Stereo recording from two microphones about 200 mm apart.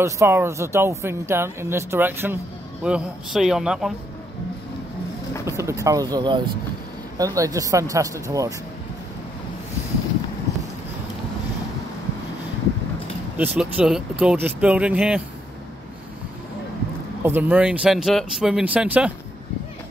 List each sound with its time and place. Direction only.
0.0 s speech: 15° right (ahead or behind)
5.4 s speech: 15° right (ahead or behind)
13.4 s speech: 5° right (ahead or behind)
17.2 s speech: 10° right (ahead or behind)